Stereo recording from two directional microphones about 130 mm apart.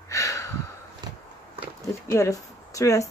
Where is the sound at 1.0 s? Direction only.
35° right (ahead or behind).